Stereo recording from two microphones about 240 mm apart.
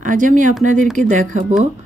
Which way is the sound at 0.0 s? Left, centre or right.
Right.